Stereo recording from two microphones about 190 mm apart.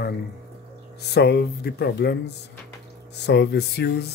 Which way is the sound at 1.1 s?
60° left (ahead or behind).